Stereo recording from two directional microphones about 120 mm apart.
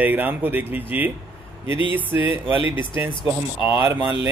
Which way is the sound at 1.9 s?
45° left (ahead or behind).